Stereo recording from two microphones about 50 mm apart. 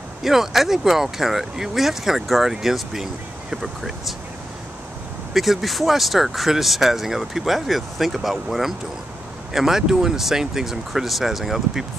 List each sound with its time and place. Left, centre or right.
0.2 s speech: centre
5.3 s speech: centre